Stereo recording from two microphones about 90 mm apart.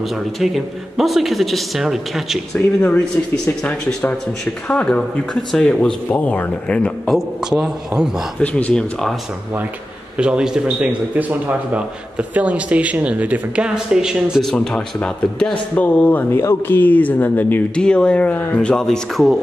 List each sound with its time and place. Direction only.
0.9 s speech: centre (ahead or behind)
4.6 s speech: 15° left (ahead or behind)
5.9 s speech: 15° left (ahead or behind)
7.1 s speech: centre (ahead or behind)
8.4 s speech: 15° left (ahead or behind)
10.1 s a man's voice: 10° right (ahead or behind)
14.5 s speech: 5° left (ahead or behind)
15.7 s speech: 15° left (ahead or behind)
17.7 s speech: 10° left (ahead or behind)